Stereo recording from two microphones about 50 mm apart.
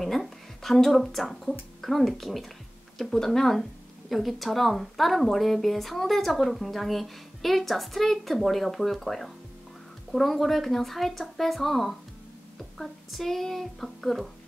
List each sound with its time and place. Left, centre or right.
0.0 s speech: centre